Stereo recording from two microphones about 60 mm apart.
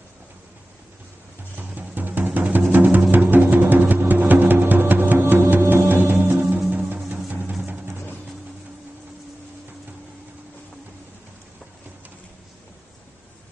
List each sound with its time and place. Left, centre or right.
1.6 s music: right